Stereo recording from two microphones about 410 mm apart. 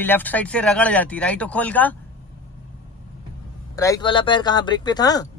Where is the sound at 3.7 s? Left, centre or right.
Centre.